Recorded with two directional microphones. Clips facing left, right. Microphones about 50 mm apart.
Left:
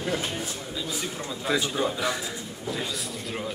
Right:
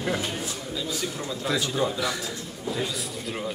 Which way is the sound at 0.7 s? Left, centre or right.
Centre.